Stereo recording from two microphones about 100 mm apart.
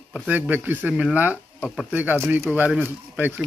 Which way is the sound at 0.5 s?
15° right (ahead or behind).